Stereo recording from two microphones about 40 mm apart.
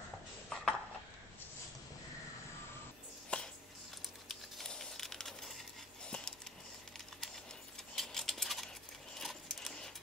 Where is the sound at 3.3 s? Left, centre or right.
Left.